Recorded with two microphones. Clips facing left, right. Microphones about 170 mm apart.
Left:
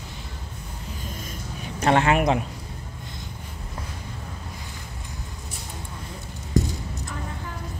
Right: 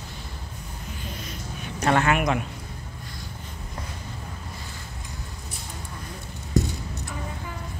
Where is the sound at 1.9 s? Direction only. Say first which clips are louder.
Left 2 dB; 30° left (ahead or behind).